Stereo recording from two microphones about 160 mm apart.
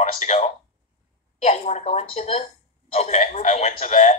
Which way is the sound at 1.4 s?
45° left (ahead or behind).